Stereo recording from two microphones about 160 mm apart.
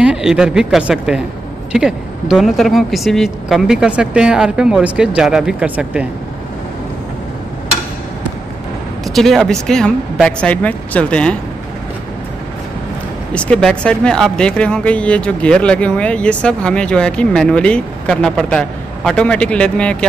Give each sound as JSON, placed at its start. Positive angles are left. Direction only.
{"t": 0.0, "sound": "speech", "side_deg": -5}
{"t": 9.0, "sound": "speech", "side_deg": 0}
{"t": 13.3, "sound": "speech", "side_deg": 5}